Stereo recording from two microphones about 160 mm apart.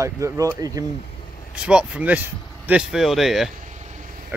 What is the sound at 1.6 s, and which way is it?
Speech, 5° right (ahead or behind).